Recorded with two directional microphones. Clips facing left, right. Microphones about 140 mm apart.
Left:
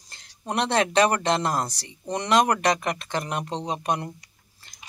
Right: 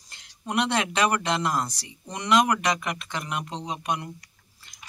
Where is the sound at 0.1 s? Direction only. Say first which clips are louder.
Even; 35° left (ahead or behind).